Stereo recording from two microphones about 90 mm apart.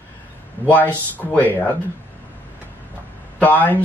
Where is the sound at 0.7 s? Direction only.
20° left (ahead or behind).